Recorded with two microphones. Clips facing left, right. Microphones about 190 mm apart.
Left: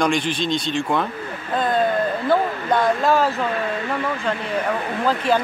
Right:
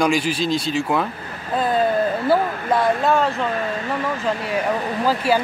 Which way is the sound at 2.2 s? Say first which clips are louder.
Right 1 dB; 5° right (ahead or behind).